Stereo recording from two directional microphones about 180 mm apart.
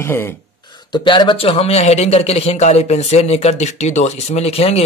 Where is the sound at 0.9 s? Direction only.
25° left (ahead or behind).